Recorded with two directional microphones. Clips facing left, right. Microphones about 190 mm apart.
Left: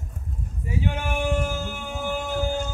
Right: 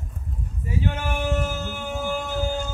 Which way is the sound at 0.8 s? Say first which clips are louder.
Left 1 dB; 15° left (ahead or behind).